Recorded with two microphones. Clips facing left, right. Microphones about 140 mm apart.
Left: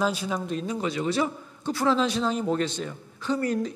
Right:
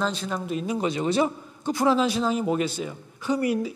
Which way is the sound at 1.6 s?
15° right (ahead or behind).